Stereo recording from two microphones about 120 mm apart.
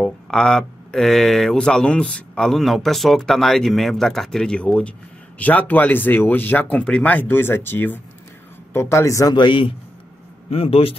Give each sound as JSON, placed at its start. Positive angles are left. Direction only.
{"t": 0.0, "sound": "speech", "side_deg": 5}
{"t": 9.3, "sound": "speech", "side_deg": 45}
{"t": 10.5, "sound": "speech", "side_deg": 55}